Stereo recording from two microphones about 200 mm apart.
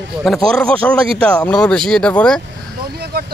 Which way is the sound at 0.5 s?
5° left (ahead or behind).